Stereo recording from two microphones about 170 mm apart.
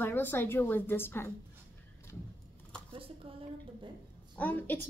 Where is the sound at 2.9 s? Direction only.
35° right (ahead or behind).